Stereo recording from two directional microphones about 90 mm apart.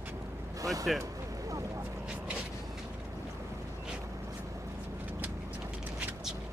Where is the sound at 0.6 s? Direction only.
40° right (ahead or behind).